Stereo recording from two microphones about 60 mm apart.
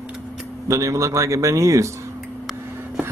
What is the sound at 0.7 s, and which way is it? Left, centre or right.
A man's voice, right.